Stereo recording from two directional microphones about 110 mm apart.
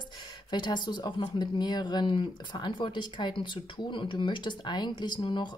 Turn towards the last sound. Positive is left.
turn(degrees=45)  # may be behind; listen again after turning